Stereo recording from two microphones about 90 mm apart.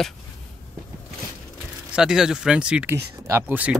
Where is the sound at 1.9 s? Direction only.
5° right (ahead or behind).